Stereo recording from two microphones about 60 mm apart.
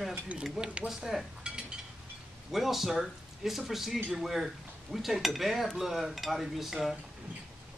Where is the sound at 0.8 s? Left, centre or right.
Centre.